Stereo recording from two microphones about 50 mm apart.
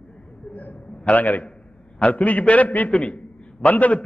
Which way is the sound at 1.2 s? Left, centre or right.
Left.